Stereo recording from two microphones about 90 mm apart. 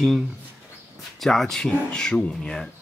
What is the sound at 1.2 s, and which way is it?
Speech, 5° left (ahead or behind).